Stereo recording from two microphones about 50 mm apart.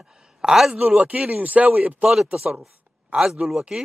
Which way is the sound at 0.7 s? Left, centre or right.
Right.